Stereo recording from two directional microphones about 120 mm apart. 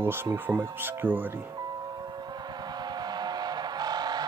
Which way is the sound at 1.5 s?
35° right (ahead or behind).